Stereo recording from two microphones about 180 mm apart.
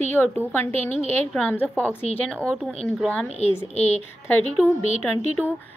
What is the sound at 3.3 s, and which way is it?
Speech, 40° left (ahead or behind).